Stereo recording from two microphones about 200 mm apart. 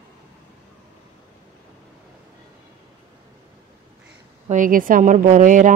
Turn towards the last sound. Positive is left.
turn(degrees=-40)  # may be behind; listen again after turning